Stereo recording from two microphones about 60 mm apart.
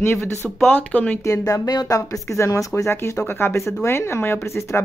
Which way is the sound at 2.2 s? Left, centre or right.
Left.